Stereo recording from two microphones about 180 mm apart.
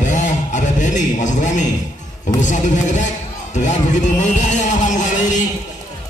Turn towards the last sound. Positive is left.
turn(degrees=45)  # may be behind; listen again after turning